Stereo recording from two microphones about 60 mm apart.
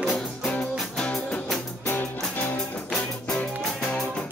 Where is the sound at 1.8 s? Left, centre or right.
Left.